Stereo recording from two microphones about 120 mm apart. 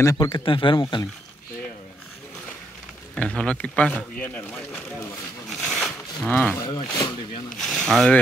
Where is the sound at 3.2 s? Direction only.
10° left (ahead or behind).